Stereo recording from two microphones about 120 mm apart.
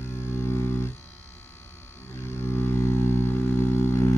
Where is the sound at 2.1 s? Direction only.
20° left (ahead or behind).